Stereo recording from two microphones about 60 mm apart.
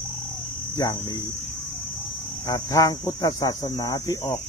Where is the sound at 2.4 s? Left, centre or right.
Left.